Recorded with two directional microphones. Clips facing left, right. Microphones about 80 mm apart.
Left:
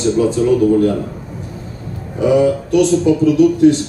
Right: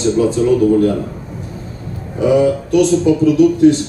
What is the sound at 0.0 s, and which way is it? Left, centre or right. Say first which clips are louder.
Speech: even; right.